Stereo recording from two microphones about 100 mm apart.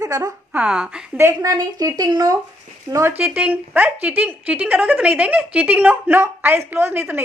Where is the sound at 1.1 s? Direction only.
25° right (ahead or behind).